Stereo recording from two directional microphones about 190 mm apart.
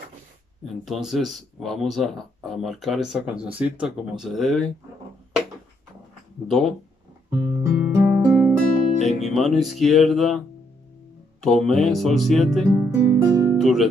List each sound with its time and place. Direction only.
0.8 s speech: centre (ahead or behind)
6.4 s speech: centre (ahead or behind)
7.2 s guitar: 15° right (ahead or behind)
9.0 s speech: centre (ahead or behind)
11.4 s speech: centre (ahead or behind)
12.7 s music: 15° right (ahead or behind)
13.6 s speech: centre (ahead or behind)